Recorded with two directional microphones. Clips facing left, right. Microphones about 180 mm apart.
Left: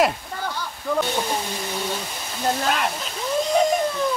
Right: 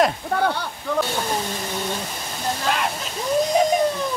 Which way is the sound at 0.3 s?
70° right (ahead or behind).